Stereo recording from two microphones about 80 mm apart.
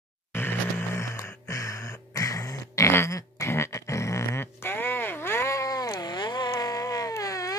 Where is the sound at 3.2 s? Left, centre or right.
Left.